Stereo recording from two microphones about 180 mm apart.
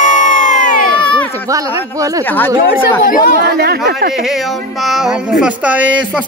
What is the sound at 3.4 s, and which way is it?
Speech, 60° right (ahead or behind).